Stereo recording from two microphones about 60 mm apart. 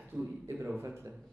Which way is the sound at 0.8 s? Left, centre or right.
Right.